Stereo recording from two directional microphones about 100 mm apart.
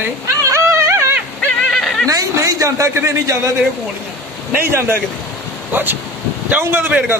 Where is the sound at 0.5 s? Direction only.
30° right (ahead or behind).